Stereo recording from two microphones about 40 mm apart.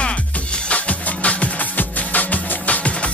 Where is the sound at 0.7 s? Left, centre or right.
Left.